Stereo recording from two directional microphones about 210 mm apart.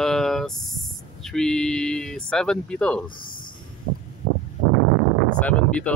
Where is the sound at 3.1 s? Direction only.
45° left (ahead or behind).